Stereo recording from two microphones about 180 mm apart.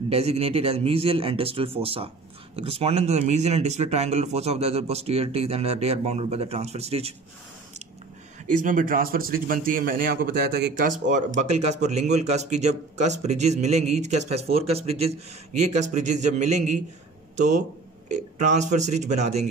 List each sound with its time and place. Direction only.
0.1 s a man's voice: 35° right (ahead or behind)
8.5 s speech: 45° right (ahead or behind); by 10.9 s 65° right (ahead or behind)
11.1 s a man's voice: 40° right (ahead or behind)